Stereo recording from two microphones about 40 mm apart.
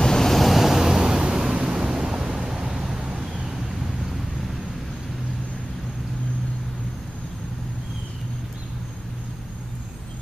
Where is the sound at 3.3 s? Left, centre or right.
Centre.